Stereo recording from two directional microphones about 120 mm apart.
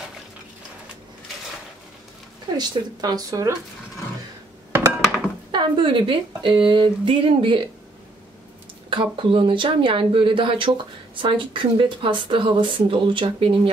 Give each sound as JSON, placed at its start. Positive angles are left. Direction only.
{"t": 2.5, "sound": "speech", "side_deg": -35}
{"t": 5.5, "sound": "speech", "side_deg": -45}
{"t": 8.9, "sound": "speech", "side_deg": -45}